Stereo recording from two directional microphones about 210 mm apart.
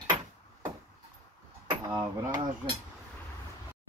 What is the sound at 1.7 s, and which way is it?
Speech, 20° right (ahead or behind).